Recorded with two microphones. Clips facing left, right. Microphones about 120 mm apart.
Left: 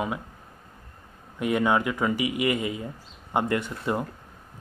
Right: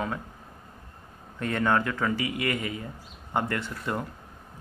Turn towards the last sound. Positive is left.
turn(degrees=20)  # may be behind; listen again after turning